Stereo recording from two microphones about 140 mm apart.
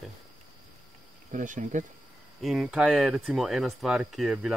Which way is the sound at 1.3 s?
65° right (ahead or behind).